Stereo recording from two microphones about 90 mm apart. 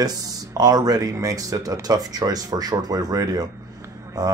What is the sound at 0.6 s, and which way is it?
Speech, 45° right (ahead or behind).